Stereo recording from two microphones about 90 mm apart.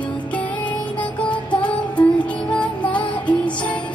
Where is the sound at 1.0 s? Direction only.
15° left (ahead or behind).